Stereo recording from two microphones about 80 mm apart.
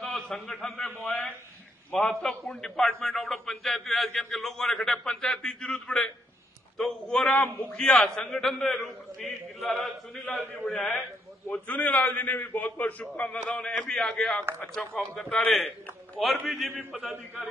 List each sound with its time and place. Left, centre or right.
0.0 s a man's voice: centre